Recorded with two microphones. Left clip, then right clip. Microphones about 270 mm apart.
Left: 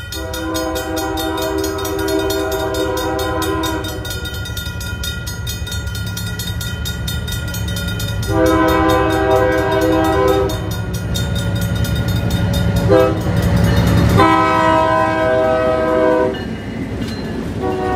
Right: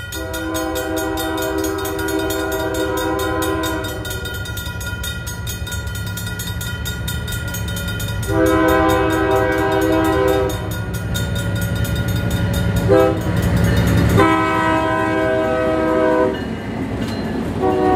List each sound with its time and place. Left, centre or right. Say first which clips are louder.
2.3 s train: left 2 dB; left
8.3 s train: left 1 dB; left
12.5 s train: left 1 dB; left; by 16.3 s centre
17.6 s vehicle: right 4 dB; right